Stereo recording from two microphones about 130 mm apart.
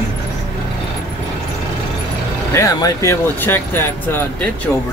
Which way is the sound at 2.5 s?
20° left (ahead or behind).